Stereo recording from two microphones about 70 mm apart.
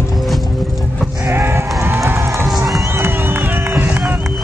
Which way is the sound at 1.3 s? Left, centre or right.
Right.